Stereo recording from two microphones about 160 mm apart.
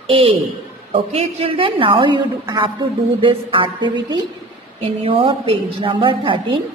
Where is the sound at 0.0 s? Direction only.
35° right (ahead or behind).